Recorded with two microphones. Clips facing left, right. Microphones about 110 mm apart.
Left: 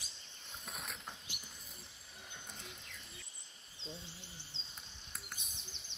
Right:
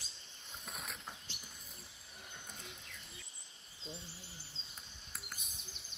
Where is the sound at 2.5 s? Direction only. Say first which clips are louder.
Even; centre (ahead or behind).